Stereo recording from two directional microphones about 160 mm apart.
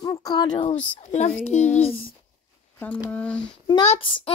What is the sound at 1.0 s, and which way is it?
Speech, 45° left (ahead or behind).